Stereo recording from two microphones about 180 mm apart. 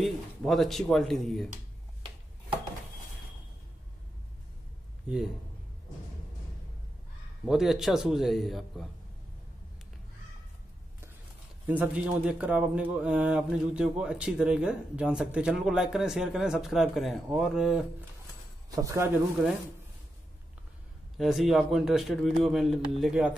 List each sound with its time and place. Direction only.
0.0 s speech: centre (ahead or behind)
5.0 s a man's voice: 5° right (ahead or behind)
7.4 s speech: centre (ahead or behind)
11.6 s speech: 10° right (ahead or behind)
18.8 s speech: 20° right (ahead or behind)
21.2 s speech: centre (ahead or behind)